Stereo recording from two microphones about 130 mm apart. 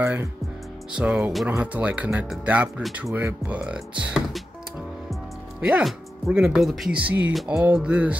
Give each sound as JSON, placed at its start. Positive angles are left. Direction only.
{"t": 0.0, "sound": "speech", "side_deg": -15}
{"t": 5.6, "sound": "speech", "side_deg": -10}